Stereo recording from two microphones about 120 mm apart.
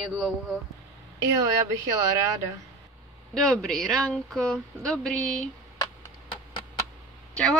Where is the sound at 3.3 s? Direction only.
5° left (ahead or behind).